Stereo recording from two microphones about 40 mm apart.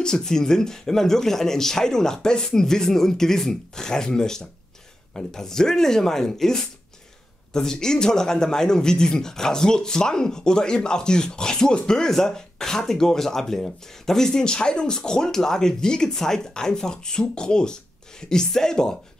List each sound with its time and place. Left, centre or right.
0.0 s speech: centre